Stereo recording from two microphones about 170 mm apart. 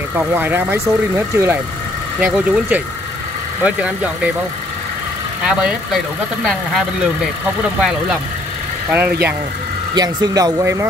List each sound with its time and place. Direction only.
0.1 s speech: 10° right (ahead or behind)
5.5 s speech: 5° right (ahead or behind)
8.9 s speech: 10° right (ahead or behind)
9.9 s speech: 25° right (ahead or behind)